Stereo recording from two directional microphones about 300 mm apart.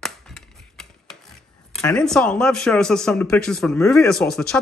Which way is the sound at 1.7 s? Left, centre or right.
Centre.